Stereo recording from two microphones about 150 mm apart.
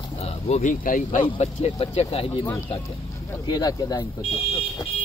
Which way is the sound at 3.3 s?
25° left (ahead or behind).